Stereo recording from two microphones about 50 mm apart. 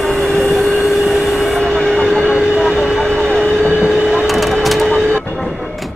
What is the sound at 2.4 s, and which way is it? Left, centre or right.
Vehicle, centre.